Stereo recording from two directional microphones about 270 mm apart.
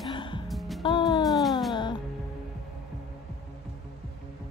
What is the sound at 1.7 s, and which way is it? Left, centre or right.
Music, centre.